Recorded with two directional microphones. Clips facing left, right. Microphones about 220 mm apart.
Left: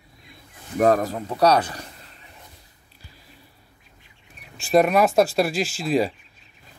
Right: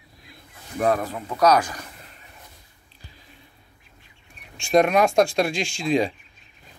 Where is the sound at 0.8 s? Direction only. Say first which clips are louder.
Left 4 dB; 40° left (ahead or behind).